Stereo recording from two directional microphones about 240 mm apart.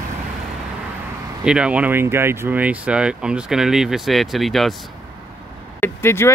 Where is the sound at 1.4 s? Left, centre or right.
Centre.